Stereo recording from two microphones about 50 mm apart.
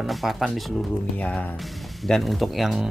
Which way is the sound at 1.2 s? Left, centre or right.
Left.